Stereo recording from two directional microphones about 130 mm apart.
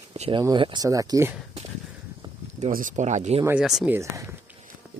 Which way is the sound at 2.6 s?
90° right.